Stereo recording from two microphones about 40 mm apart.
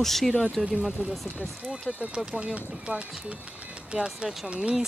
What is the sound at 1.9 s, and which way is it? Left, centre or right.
Speech, left.